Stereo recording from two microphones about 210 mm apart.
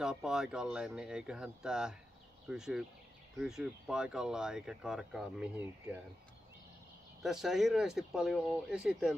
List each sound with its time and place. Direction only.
0.0 s speech: 5° right (ahead or behind)
7.2 s speech: centre (ahead or behind)